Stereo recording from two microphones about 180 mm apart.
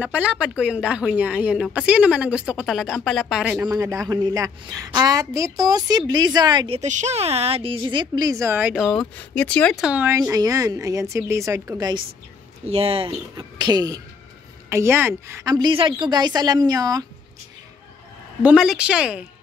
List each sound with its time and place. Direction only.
0.0 s a woman's voice: 5° right (ahead or behind)
3.7 s a woman's voice: 20° right (ahead or behind)
6.8 s a woman's voice: 40° right (ahead or behind); by 9.0 s 5° right (ahead or behind)
9.3 s speech: 5° left (ahead or behind)
9.8 s a woman's voice: 10° right (ahead or behind)
12.6 s a woman's voice: 35° right (ahead or behind)
18.4 s speech: 5° right (ahead or behind)